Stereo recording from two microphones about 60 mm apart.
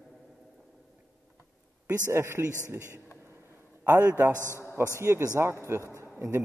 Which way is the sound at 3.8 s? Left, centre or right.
Right.